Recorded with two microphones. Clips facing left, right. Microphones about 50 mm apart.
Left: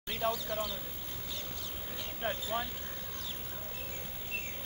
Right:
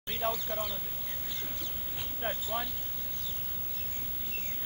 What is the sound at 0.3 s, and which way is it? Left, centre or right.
Speech, right.